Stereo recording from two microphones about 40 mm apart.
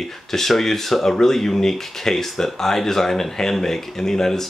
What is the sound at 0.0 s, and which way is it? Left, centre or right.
Speech, centre.